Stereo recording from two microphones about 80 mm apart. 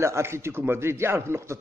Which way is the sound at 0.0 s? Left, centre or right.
Right.